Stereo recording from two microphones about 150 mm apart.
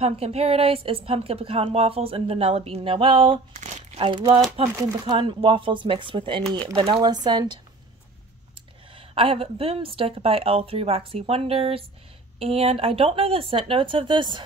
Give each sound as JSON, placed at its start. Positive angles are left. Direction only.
{"t": 0.0, "sound": "a woman's voice", "side_deg": -40}
{"t": 3.5, "sound": "crumpling", "side_deg": -50}
{"t": 4.0, "sound": "a woman's voice", "side_deg": -35}
{"t": 8.9, "sound": "a woman's voice", "side_deg": -35}